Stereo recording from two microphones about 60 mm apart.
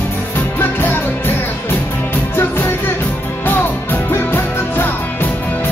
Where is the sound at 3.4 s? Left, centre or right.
Left.